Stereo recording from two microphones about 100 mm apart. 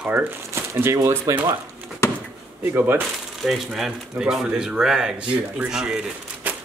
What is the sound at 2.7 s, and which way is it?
Speech, 20° right (ahead or behind).